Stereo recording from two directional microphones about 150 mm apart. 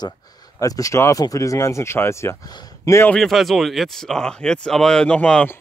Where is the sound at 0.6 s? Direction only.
20° left (ahead or behind).